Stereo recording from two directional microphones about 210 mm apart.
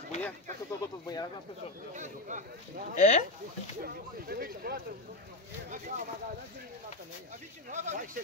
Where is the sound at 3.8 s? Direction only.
45° right (ahead or behind).